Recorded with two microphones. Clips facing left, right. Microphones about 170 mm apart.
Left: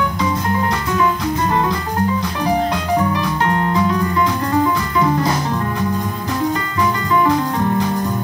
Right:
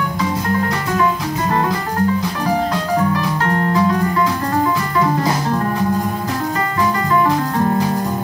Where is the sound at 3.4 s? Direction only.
40° right (ahead or behind).